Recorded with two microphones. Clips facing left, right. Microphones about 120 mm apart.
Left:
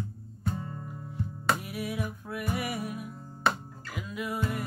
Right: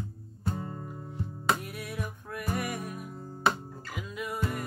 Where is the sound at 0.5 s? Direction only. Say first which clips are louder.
Right 1 dB; 30° right (ahead or behind).